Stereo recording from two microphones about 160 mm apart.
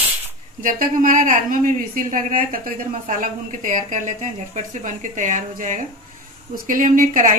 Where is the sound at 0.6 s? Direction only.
55° right (ahead or behind).